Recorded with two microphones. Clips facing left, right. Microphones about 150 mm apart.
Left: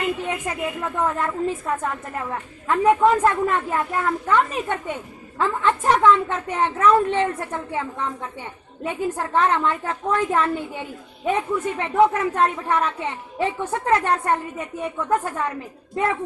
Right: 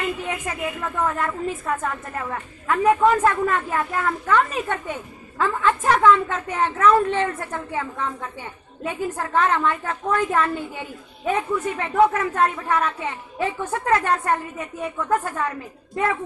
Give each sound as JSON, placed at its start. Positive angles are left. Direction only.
{"t": 0.2, "sound": "a woman's voice", "side_deg": 25}